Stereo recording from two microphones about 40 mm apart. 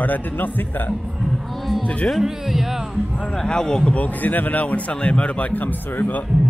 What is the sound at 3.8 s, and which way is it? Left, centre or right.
Speech, left.